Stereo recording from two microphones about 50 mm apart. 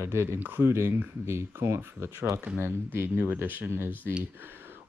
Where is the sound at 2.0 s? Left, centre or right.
Right.